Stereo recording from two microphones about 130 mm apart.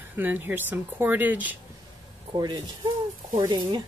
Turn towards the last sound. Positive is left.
turn(degrees=-30)  # may be behind; listen again after turning